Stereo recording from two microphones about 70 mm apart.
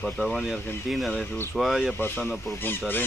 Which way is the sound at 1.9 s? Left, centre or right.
Left.